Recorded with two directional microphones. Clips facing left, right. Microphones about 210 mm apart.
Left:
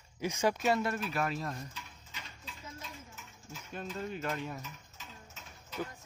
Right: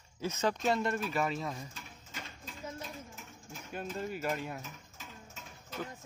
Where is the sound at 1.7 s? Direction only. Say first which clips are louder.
Right 3 dB; 45° right (ahead or behind).